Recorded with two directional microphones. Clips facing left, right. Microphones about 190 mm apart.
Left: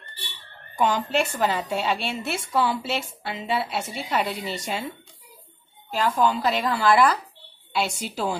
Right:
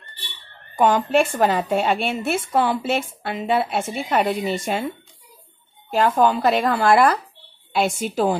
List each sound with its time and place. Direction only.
0.7 s a woman's voice: 50° right (ahead or behind)
5.9 s a woman's voice: 50° right (ahead or behind)